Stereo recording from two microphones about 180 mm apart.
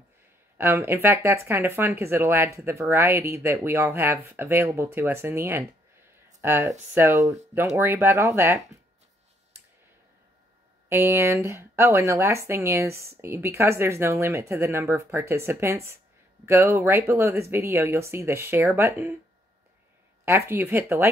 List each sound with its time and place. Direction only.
0.6 s speech: 15° right (ahead or behind)
10.9 s speech: 15° right (ahead or behind)
20.2 s speech: 15° right (ahead or behind)